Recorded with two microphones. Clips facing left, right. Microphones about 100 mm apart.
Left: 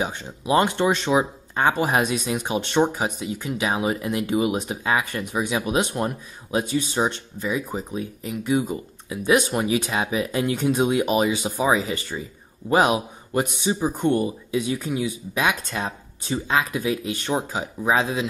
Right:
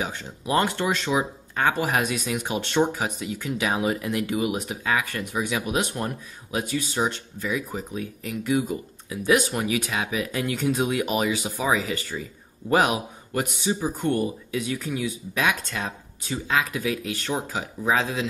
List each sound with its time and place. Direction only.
0.0 s speech: 20° left (ahead or behind)